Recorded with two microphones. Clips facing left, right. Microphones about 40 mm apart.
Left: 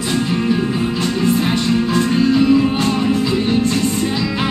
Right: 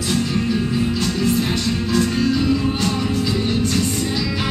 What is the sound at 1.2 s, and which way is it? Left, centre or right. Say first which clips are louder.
Music: left 5 dB; left.